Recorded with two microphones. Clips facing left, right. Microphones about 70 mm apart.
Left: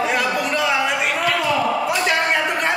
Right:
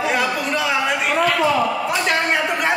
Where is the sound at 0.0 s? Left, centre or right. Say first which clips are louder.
Even; centre.